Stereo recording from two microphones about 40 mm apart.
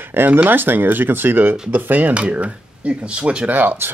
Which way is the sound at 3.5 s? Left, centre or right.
Right.